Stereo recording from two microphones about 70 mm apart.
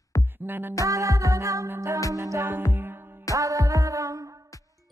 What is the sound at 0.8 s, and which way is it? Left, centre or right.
Music, right.